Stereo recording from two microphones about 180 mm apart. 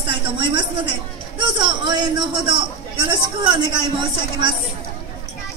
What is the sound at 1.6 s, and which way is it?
Speech, 25° right (ahead or behind).